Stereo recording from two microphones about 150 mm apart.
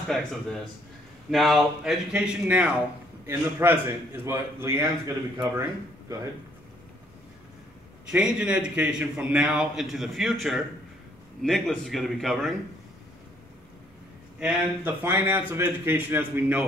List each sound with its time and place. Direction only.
0.1 s a man's voice: 5° left (ahead or behind); by 5.1 s 20° right (ahead or behind)
8.1 s a man's voice: 5° right (ahead or behind)
14.4 s speech: 10° right (ahead or behind)